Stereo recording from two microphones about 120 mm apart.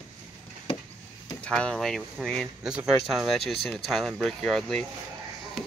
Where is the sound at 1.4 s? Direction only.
5° left (ahead or behind).